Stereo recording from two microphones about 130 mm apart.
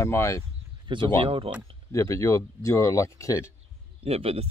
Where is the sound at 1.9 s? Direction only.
20° left (ahead or behind).